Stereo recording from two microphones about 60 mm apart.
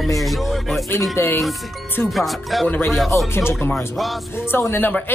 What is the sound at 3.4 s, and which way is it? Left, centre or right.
Speech, left.